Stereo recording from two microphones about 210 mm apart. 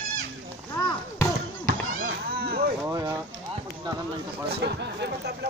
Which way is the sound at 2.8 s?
15° right (ahead or behind).